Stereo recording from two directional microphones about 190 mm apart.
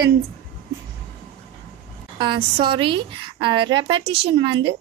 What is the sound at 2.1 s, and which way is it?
A woman's voice, 25° right (ahead or behind).